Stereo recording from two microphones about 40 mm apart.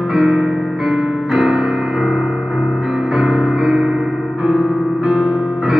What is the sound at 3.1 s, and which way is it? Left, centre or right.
Music, right.